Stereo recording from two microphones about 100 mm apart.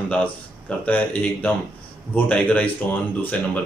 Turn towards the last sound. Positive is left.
turn(degrees=10)  # may be behind; listen again after turning